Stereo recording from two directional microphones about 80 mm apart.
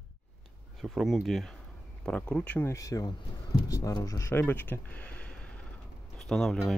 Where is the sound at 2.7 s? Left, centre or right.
Left.